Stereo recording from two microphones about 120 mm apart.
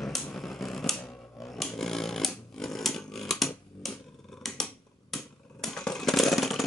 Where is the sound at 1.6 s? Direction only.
Centre (ahead or behind).